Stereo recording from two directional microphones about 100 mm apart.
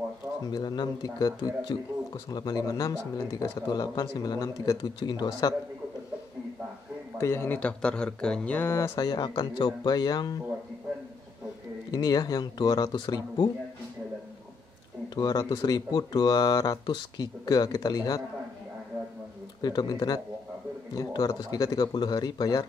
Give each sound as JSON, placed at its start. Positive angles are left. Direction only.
{"t": 0.5, "sound": "speech", "side_deg": 45}
{"t": 7.2, "sound": "speech", "side_deg": 25}
{"t": 8.5, "sound": "speech", "side_deg": 25}
{"t": 8.9, "sound": "speech", "side_deg": 45}
{"t": 11.9, "sound": "speech", "side_deg": 40}
{"t": 15.1, "sound": "speech", "side_deg": 40}
{"t": 19.6, "sound": "speech", "side_deg": 45}